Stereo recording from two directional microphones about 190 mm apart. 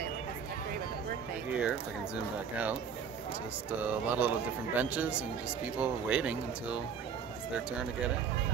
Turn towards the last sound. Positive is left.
turn(degrees=-5)  # may be behind; listen again after turning